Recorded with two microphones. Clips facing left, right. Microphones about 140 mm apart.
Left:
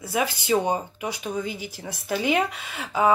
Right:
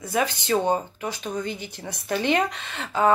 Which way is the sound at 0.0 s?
5° left (ahead or behind).